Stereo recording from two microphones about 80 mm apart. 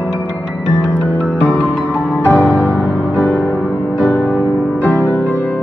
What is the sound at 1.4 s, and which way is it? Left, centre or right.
Music, centre.